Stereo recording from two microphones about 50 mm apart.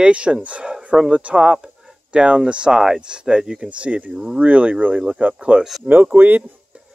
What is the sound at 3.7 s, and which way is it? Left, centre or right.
Speech, right.